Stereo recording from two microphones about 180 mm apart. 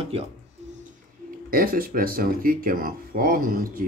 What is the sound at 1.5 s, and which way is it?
Speech, 55° right (ahead or behind).